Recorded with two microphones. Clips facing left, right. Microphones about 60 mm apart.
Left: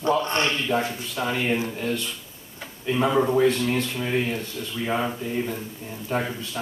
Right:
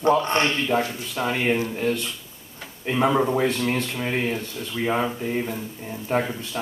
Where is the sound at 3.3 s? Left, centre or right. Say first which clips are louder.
Left 2 dB; right.